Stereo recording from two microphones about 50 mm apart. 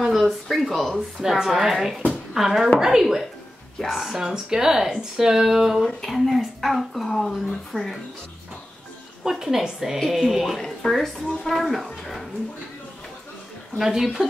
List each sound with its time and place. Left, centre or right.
0.0 s a woman's voice: centre
9.2 s a woman's voice: centre
13.7 s a woman's voice: centre